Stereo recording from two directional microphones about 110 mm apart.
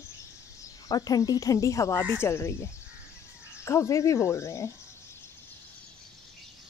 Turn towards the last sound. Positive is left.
turn(degrees=25)  # may be behind; listen again after turning